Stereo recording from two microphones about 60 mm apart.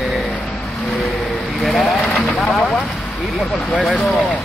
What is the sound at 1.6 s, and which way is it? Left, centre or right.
Speech, centre.